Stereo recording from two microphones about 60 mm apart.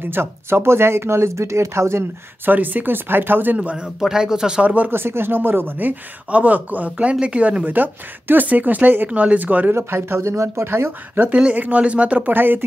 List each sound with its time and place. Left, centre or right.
0.1 s speech: right
2.4 s speech: right
3.5 s a man's voice: centre
4.6 s speech: right
4.9 s speech: right
9.8 s speech: right
10.7 s speech: right